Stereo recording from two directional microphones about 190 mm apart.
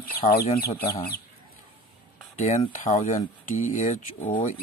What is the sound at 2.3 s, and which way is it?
Speech, 40° left (ahead or behind).